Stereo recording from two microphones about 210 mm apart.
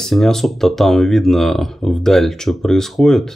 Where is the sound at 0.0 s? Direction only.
Centre (ahead or behind).